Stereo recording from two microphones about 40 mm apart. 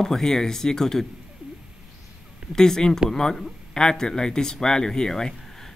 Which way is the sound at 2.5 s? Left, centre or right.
Centre.